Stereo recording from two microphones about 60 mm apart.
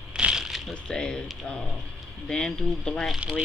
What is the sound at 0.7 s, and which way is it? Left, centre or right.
Speech, centre.